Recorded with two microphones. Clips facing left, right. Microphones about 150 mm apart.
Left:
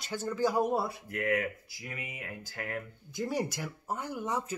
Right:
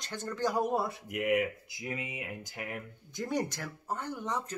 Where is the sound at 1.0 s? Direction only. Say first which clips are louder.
Right 2 dB; 15° right (ahead or behind).